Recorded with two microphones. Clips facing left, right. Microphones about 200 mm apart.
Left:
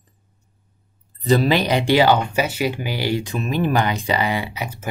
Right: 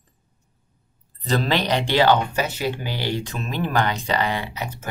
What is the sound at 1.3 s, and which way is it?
Speech, 10° left (ahead or behind).